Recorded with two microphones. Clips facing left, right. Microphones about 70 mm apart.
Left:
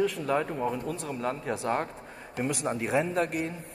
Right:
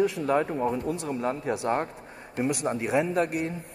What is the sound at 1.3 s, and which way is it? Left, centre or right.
A woman's voice, centre.